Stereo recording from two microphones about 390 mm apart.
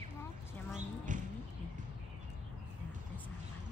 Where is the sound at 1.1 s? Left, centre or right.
Centre.